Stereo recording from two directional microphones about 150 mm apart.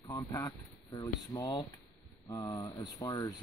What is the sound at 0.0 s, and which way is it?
Speech, 20° left (ahead or behind).